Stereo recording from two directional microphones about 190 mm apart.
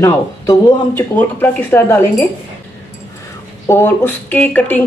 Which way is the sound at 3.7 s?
10° left (ahead or behind).